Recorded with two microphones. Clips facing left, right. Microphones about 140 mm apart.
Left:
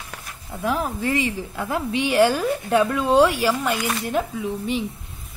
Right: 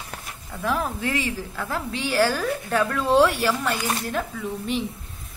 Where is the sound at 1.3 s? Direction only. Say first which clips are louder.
Left 3 dB; 20° left (ahead or behind).